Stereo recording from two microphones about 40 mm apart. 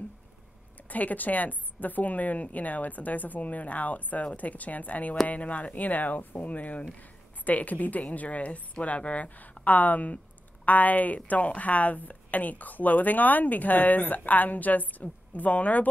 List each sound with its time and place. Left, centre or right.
0.8 s a woman's voice: left